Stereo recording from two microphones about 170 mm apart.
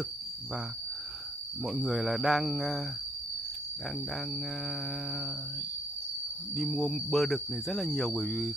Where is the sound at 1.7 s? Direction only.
Centre (ahead or behind).